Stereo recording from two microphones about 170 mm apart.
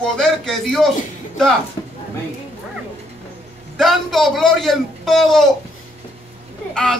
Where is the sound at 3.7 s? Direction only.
Centre (ahead or behind).